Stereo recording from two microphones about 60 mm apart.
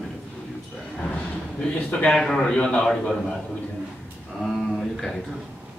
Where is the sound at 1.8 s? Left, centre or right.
Left.